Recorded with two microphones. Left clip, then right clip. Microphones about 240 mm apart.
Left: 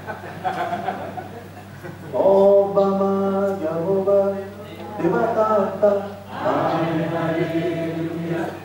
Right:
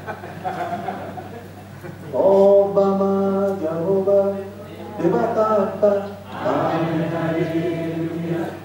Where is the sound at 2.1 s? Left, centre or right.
Centre.